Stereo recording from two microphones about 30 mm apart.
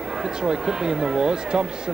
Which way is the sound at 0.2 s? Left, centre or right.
Right.